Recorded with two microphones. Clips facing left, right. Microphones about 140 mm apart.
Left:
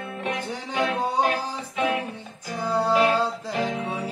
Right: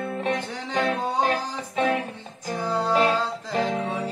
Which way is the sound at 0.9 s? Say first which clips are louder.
Left 1 dB; 10° left (ahead or behind).